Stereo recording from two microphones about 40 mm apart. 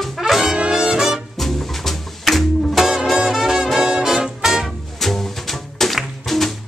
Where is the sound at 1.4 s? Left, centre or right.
Centre.